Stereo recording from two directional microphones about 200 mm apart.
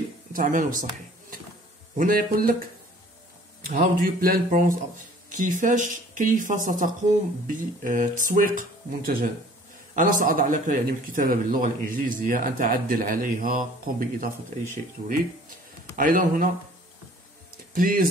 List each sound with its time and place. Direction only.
0.3 s a man's voice: 45° right (ahead or behind)
2.0 s a man's voice: 45° right (ahead or behind)
3.6 s a man's voice: 45° right (ahead or behind)
16.0 s speech: 40° right (ahead or behind)
17.7 s a man's voice: 45° right (ahead or behind)